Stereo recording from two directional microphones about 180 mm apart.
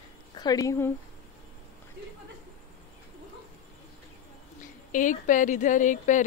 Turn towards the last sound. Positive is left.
turn(degrees=45)  # may be behind; listen again after turning